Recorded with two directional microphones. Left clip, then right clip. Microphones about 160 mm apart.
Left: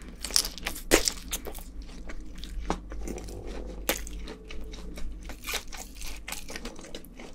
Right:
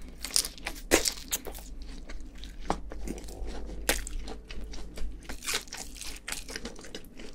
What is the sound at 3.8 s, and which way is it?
Crunch, 35° right (ahead or behind).